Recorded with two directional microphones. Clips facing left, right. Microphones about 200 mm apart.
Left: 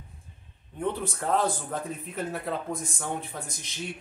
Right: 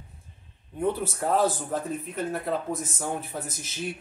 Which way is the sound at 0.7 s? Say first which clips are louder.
Right 3 dB; 5° right (ahead or behind).